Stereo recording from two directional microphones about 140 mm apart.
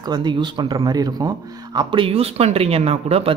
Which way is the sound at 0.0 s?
30° right (ahead or behind).